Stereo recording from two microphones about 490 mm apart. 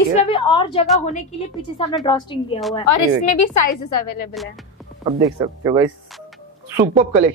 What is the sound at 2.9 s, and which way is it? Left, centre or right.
A woman's voice, left.